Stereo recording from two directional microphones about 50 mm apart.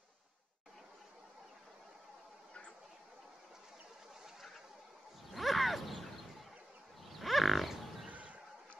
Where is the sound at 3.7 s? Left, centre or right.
Centre.